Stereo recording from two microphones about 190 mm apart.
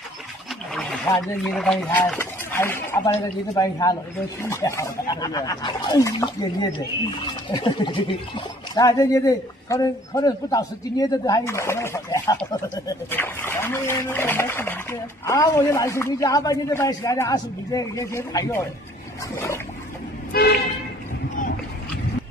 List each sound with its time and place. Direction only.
0.7 s speech: centre (ahead or behind)
19.3 s a sound: 15° left (ahead or behind)
20.3 s speech: 50° left (ahead or behind)